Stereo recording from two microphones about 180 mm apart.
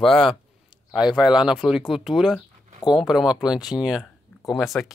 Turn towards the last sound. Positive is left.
turn(degrees=0)  # may be behind; listen again after turning